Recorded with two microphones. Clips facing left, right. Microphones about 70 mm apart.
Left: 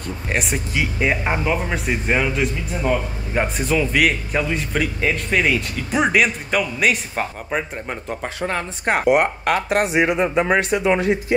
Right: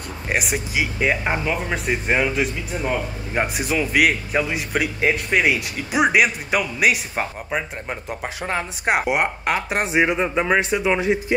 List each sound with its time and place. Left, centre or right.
0.3 s a man's voice: centre; by 10.1 s right
10.1 s speech: centre
11.0 s speech: centre